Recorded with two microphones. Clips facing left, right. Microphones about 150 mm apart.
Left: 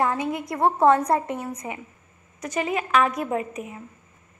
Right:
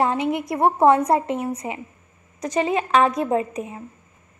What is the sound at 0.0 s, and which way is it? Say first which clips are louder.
A woman's voice: right 3 dB; 25° right (ahead or behind).